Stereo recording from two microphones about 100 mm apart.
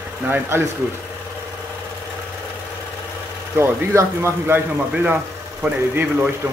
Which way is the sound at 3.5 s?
25° right (ahead or behind).